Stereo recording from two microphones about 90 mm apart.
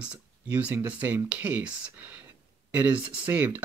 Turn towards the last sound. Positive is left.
turn(degrees=-20)  # may be behind; listen again after turning